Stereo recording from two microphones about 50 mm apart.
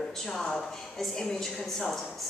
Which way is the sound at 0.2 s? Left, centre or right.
Centre.